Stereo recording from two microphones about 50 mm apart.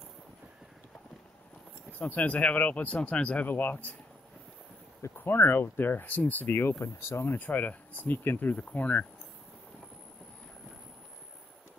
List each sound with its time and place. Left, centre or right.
2.0 s speech: left
3.4 s speech: left
5.2 s speech: left
6.8 s speech: left
7.3 s speech: left